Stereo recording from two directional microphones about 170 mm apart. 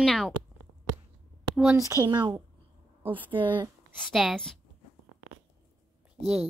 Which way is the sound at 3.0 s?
10° right (ahead or behind).